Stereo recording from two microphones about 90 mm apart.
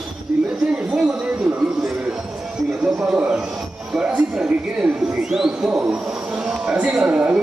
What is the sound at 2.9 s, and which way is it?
Speech, 10° right (ahead or behind).